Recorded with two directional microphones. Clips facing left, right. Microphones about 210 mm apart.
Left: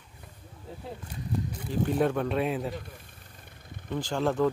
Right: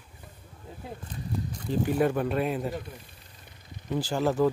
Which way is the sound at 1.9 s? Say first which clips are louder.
Even; 5° right (ahead or behind).